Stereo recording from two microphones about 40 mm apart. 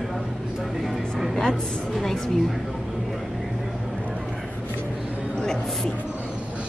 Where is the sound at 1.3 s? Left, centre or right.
Centre.